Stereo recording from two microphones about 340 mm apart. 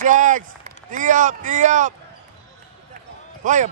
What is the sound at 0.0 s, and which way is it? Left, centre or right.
A man's voice, right.